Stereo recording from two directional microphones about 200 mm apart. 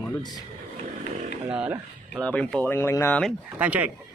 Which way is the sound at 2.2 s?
5° left (ahead or behind).